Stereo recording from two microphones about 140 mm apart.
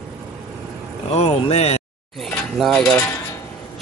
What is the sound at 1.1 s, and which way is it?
Speech, 45° left (ahead or behind).